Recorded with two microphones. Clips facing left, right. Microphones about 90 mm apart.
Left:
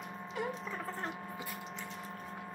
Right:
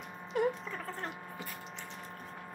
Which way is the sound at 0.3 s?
50° right (ahead or behind).